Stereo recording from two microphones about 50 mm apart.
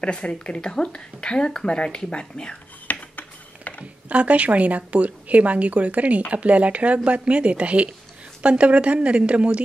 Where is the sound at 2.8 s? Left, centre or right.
Left.